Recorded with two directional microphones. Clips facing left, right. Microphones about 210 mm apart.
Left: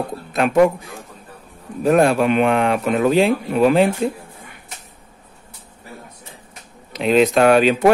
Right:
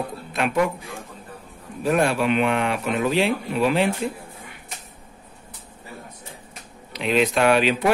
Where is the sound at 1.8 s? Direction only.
45° left (ahead or behind).